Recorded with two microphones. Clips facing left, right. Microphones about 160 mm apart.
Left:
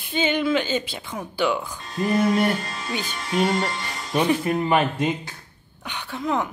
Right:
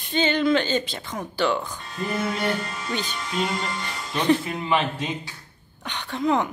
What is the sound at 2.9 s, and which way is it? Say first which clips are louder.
A woman's voice: left 3 dB; 10° left (ahead or behind).